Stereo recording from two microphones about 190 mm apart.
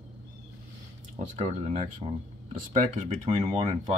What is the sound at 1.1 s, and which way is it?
Speech, 40° right (ahead or behind).